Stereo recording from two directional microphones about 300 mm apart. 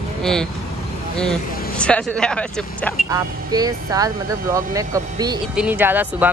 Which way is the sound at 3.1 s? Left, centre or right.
Centre.